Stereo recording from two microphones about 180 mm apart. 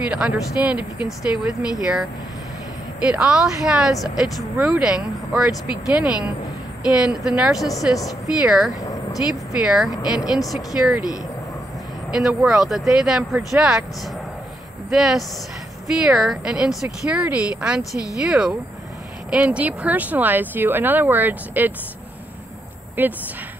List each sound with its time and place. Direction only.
0.1 s speech: 5° right (ahead or behind)
8.8 s vehicle: 20° left (ahead or behind)
9.3 s speech: centre (ahead or behind)
12.1 s speech: 5° right (ahead or behind)
14.9 s speech: centre (ahead or behind)
23.0 s speech: 10° right (ahead or behind)